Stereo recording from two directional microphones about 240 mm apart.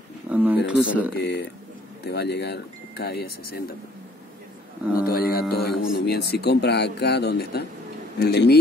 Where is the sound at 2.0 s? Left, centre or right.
Left.